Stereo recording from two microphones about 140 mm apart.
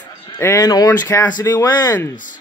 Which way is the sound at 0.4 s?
20° left (ahead or behind).